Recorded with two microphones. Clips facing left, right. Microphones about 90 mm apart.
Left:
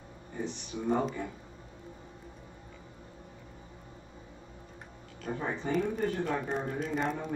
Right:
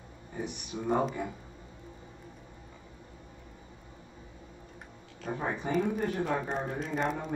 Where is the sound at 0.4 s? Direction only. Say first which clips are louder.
Even; 15° right (ahead or behind).